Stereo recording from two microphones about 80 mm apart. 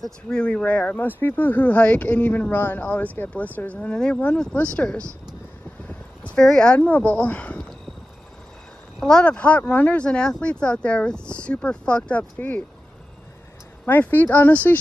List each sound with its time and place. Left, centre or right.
0.0 s speech: centre
5.9 s a sound: centre
6.4 s speech: centre
9.0 s speech: centre
13.8 s speech: left